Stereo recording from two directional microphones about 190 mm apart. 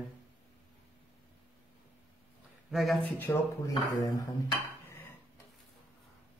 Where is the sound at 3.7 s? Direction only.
20° left (ahead or behind).